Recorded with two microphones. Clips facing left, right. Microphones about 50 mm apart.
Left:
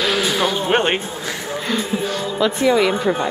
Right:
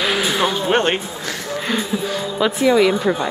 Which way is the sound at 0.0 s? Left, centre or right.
Centre.